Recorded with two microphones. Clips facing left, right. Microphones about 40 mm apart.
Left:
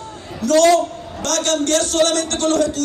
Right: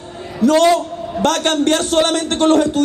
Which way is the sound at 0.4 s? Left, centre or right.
Right.